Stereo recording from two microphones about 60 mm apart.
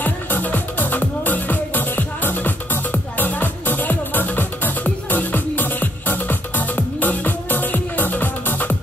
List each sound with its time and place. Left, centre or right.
0.0 s music: left